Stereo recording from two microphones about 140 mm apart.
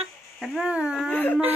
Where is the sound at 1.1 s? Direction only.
10° left (ahead or behind).